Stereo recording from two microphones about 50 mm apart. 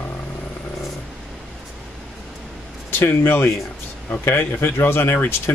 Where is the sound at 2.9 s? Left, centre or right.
Left.